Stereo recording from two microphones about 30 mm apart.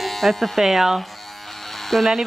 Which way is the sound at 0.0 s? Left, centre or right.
Centre.